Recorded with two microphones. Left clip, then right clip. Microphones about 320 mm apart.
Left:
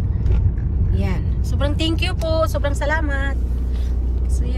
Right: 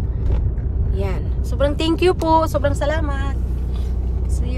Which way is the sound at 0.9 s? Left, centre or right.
Centre.